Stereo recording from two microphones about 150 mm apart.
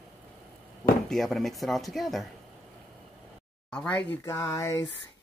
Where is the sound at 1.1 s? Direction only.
Centre (ahead or behind).